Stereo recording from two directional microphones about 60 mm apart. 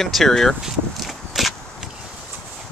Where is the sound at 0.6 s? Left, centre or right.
Centre.